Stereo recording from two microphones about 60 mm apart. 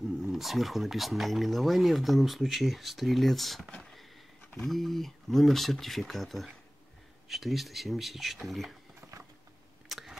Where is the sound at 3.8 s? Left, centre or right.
Centre.